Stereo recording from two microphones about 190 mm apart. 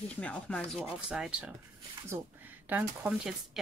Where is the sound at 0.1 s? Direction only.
5° left (ahead or behind).